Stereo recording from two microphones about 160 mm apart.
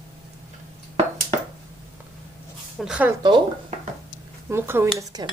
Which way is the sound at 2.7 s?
5° right (ahead or behind).